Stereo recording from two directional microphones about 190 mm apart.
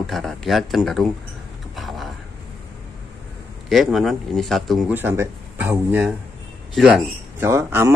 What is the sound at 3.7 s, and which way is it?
Speech, centre (ahead or behind).